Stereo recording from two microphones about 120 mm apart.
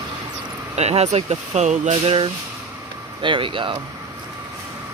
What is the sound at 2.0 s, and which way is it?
Speech, 50° right (ahead or behind).